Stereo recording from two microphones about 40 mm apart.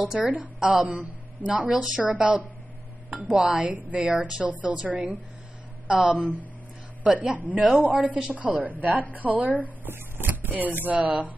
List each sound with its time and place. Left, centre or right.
0.2 s a woman's voice: right
0.6 s a woman's voice: right
1.0 s speech: right
1.7 s a woman's voice: centre
2.1 s a woman's voice: right
4.8 s a woman's voice: right
9.8 s speech: right